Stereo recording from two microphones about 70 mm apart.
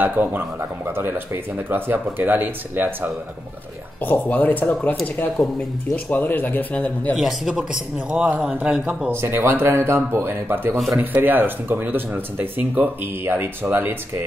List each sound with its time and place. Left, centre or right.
0.0 s speech: right
4.0 s a man's voice: left
6.0 s a man's voice: left
7.2 s a man's voice: centre
9.1 s speech: right